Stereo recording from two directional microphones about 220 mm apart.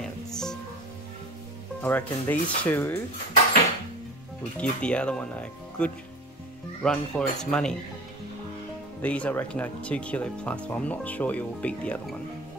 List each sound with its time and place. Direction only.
0.0 s music: 5° left (ahead or behind)
1.8 s speech: 10° left (ahead or behind)
4.6 s speech: 5° left (ahead or behind)
9.0 s speech: 5° left (ahead or behind)